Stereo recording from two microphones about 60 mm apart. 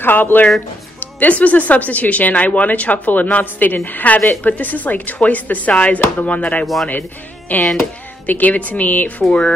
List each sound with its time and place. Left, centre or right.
0.0 s speech: left
6.6 s speech: centre
6.9 s speech: left